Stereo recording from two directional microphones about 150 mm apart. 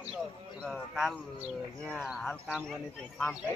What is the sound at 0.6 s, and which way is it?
Speech, centre (ahead or behind).